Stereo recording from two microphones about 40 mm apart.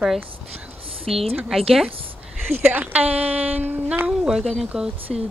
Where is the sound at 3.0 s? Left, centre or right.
Right.